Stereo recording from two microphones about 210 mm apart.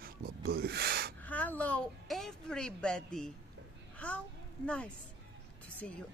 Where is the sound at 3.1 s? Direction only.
Centre (ahead or behind).